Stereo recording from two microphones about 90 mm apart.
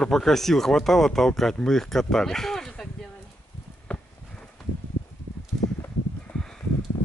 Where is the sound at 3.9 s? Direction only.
15° left (ahead or behind).